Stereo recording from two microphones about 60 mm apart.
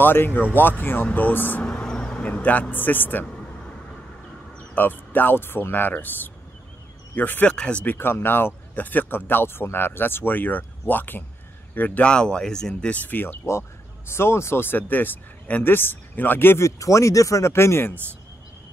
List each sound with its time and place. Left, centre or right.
0.0 s speech: left
1.6 s a sound: centre
2.2 s speech: left
4.7 s speech: left
7.4 s speech: centre
7.8 s speech: left
12.0 s speech: centre
12.9 s speech: left
13.5 s speech: left
16.6 s speech: left